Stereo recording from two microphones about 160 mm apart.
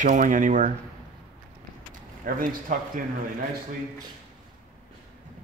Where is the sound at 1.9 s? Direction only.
60° right (ahead or behind).